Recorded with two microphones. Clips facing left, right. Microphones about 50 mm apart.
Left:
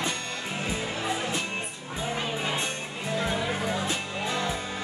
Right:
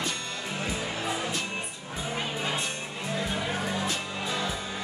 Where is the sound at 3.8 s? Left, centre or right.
Centre.